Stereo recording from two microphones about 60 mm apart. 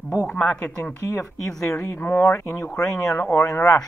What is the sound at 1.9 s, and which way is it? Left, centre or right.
Speech, left.